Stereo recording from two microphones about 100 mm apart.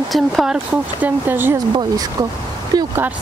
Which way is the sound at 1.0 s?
20° right (ahead or behind).